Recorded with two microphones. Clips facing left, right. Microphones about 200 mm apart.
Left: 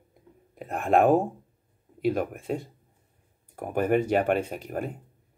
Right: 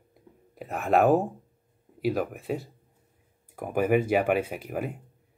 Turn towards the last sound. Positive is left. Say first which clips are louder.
# even
turn(degrees=-5)  # may be behind; listen again after turning